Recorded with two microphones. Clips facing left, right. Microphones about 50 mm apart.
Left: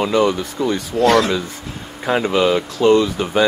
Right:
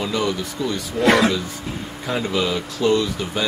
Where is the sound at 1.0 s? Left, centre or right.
Centre.